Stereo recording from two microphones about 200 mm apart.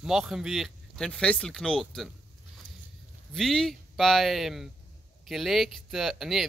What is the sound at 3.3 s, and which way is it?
Speech, centre (ahead or behind).